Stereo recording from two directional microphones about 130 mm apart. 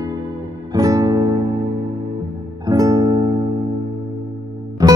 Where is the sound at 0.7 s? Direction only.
30° right (ahead or behind).